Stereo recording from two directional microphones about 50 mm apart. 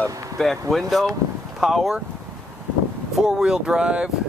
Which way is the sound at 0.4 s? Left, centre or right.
Centre.